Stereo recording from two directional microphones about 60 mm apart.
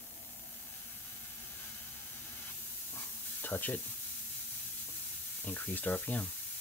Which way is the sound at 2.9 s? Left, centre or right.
Left.